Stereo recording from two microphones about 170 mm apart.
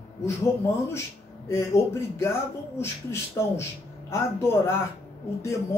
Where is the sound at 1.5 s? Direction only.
15° left (ahead or behind).